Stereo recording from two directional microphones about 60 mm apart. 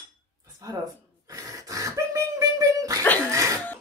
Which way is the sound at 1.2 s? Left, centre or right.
Right.